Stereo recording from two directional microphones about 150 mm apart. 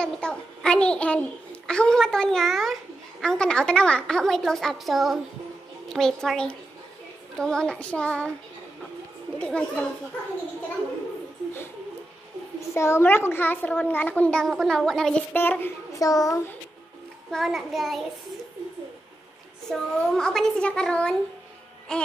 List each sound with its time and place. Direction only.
0.0 s a child's voice: 5° left (ahead or behind)
9.4 s a child's voice: 10° left (ahead or behind)
12.5 s a child's voice: 20° left (ahead or behind)
16.0 s a child's voice: 25° left (ahead or behind)
17.3 s a child's voice: centre (ahead or behind)
19.7 s a child's voice: 5° left (ahead or behind)